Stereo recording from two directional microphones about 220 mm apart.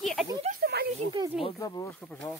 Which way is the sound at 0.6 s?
45° right (ahead or behind).